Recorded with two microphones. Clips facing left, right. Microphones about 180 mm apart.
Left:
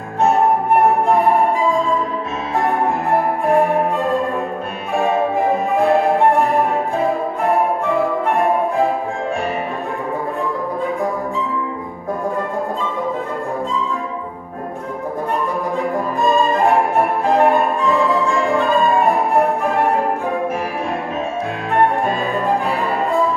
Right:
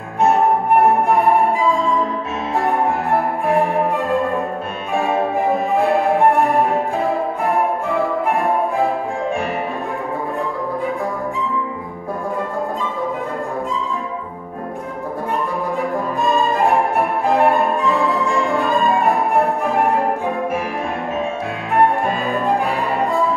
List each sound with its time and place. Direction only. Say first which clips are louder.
3.5 s flute: left 2 dB; centre (ahead or behind)
6.2 s music: even; centre (ahead or behind)
16.2 s music: left 2 dB; centre (ahead or behind)
17.3 s music: left 1 dB; 20° left (ahead or behind)
17.6 s music: left 1 dB; centre (ahead or behind)
18.6 s music: left 2 dB; 20° right (ahead or behind)